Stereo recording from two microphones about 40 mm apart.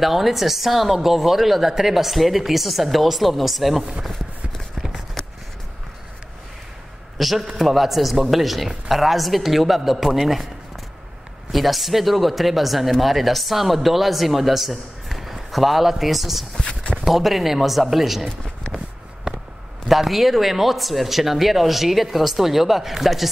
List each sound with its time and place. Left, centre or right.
0.0 s a woman's voice: centre
7.2 s a man's voice: centre
11.5 s a woman's voice: centre
16.5 s a sound: centre
17.0 s a woman's voice: centre
19.3 s a sound: right
19.9 s a woman's voice: centre